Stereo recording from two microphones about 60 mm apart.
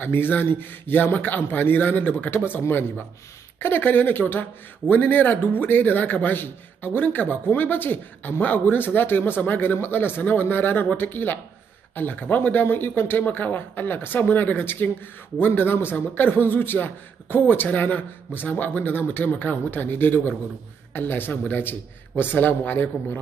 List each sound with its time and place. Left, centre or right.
0.0 s a man's voice: left
3.5 s a man's voice: left